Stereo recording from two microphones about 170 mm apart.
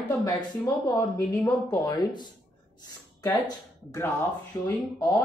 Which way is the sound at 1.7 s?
25° left (ahead or behind).